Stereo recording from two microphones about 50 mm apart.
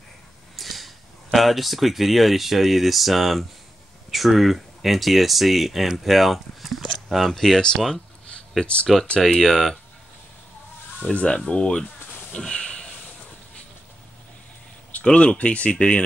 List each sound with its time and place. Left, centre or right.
0.6 s speech: centre
7.6 s a sound: centre
8.9 s speech: centre
11.1 s speech: left
15.0 s speech: left